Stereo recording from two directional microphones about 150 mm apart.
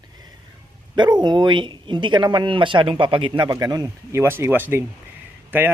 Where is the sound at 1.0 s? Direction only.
30° right (ahead or behind); by 5.7 s 15° right (ahead or behind).